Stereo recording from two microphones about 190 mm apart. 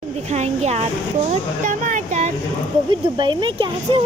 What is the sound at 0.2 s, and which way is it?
Speech, 35° right (ahead or behind).